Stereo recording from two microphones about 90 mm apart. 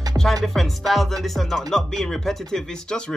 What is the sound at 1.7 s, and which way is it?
Speech, 5° left (ahead or behind).